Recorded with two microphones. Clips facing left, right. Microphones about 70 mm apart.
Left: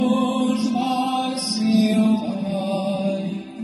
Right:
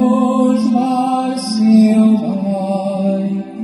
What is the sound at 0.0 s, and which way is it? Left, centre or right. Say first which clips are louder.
Mantra: right 7 dB; right.